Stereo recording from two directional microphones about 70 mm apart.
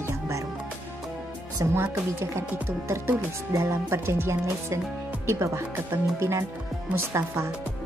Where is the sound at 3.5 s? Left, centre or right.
Right.